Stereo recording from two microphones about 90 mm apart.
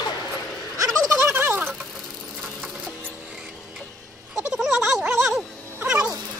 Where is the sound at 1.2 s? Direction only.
25° right (ahead or behind).